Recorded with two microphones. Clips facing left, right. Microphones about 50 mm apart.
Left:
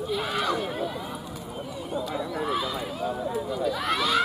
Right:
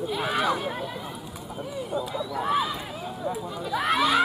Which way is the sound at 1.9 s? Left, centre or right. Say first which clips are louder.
Right 1 dB; left.